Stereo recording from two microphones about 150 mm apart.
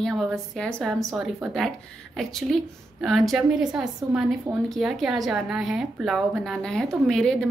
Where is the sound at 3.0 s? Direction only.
Centre (ahead or behind).